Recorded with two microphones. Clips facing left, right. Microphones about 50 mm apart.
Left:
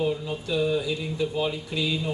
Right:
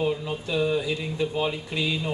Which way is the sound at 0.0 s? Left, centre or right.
Right.